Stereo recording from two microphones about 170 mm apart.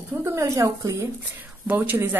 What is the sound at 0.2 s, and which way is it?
A woman's voice, 15° right (ahead or behind).